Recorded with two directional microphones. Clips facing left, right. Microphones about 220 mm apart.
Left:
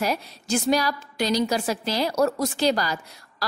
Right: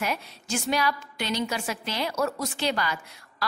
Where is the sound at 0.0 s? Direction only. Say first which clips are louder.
Left 4 dB; 35° left (ahead or behind).